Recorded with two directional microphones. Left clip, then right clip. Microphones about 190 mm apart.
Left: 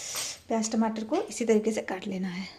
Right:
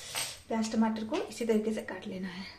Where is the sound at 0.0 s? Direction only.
35° left (ahead or behind).